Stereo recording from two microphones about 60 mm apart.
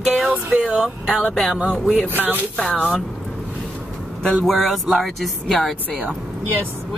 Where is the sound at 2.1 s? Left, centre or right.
Right.